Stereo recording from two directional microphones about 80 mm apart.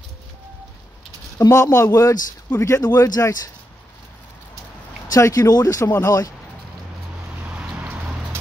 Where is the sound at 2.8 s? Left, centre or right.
Left.